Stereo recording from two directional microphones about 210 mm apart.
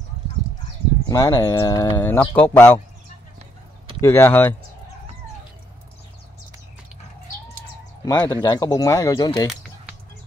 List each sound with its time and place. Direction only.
1.0 s speech: 20° left (ahead or behind)
4.0 s speech: 10° left (ahead or behind)
8.0 s speech: 20° left (ahead or behind)